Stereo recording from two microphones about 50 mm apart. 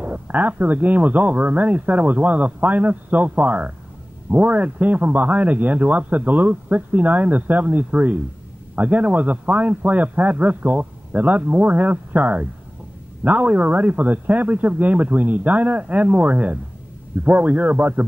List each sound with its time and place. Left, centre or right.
0.0 s a man's voice: right